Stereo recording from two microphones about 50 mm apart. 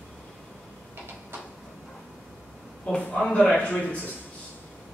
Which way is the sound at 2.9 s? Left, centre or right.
Left.